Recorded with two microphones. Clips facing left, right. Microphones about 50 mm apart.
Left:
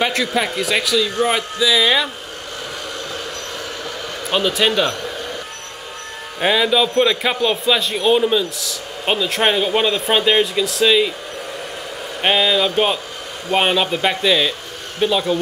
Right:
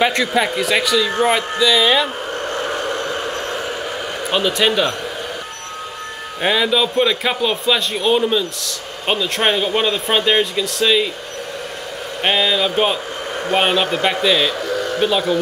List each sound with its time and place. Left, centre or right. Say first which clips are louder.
0.0 s a man's voice: right 2 dB; centre
2.5 s vehicle: right 6 dB; right
4.3 s a man's voice: even; centre
6.4 s a man's voice: left 1 dB; centre
12.2 s a man's voice: left 1 dB; centre